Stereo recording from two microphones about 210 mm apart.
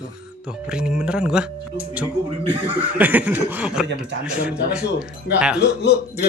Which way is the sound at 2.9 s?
5° right (ahead or behind).